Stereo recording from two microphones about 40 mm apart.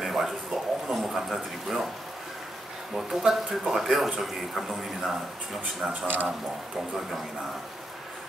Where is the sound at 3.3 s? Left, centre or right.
Centre.